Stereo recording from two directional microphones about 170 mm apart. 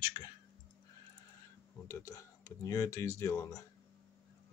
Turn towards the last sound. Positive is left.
turn(degrees=15)  # may be behind; listen again after turning